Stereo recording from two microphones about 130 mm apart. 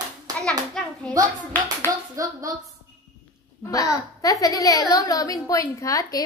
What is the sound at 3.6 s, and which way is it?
A woman's voice, 25° left (ahead or behind).